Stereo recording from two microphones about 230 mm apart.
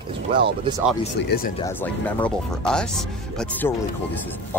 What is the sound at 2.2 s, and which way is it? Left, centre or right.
Speech, centre.